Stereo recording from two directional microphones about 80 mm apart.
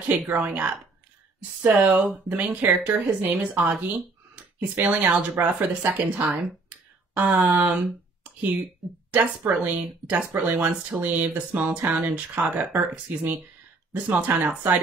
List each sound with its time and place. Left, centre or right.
0.3 s speech: right
4.6 s speech: right
6.2 s speech: centre
6.7 s a sound: centre
9.1 s speech: right